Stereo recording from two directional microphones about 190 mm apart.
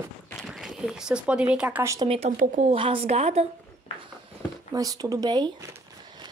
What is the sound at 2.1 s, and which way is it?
Speech, 40° right (ahead or behind).